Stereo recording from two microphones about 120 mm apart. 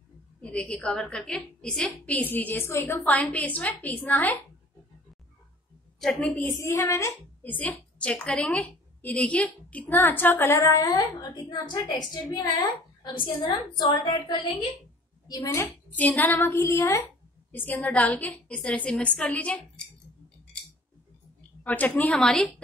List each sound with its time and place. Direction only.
0.4 s a woman's voice: 10° left (ahead or behind)
5.9 s a woman's voice: 5° left (ahead or behind)
6.6 s speech: 25° left (ahead or behind)
7.4 s a woman's voice: 15° left (ahead or behind); by 14.4 s 40° left (ahead or behind)
15.2 s speech: 30° left (ahead or behind)
15.9 s a woman's voice: 15° left (ahead or behind)
21.6 s a woman's voice: 15° left (ahead or behind)